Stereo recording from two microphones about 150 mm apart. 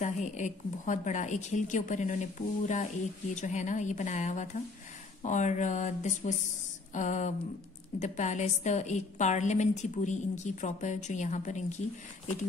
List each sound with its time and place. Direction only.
0.0 s a woman's voice: 55° left (ahead or behind)